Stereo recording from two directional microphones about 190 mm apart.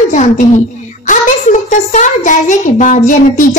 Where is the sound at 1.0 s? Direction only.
40° left (ahead or behind).